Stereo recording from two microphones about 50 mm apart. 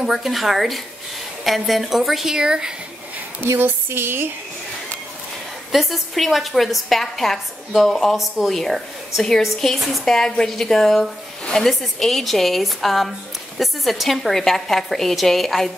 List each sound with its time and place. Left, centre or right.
0.0 s a woman's voice: centre
2.3 s speech: centre
3.5 s speech: right
5.7 s a woman's voice: centre